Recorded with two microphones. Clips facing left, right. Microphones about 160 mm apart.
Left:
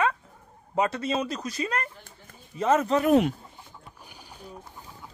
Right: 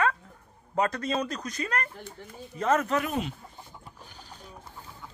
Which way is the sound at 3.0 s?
60° left (ahead or behind).